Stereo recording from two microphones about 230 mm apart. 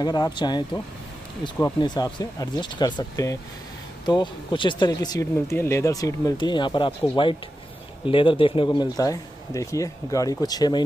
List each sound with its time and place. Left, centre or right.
0.0 s speech: centre